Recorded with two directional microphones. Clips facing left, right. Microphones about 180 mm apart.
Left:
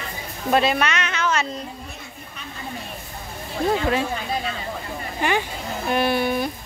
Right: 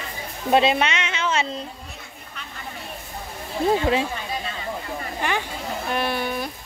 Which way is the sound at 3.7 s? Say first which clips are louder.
Right 1 dB; 25° right (ahead or behind).